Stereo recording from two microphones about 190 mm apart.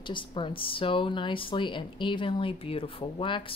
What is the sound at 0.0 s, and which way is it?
Speech, 25° left (ahead or behind).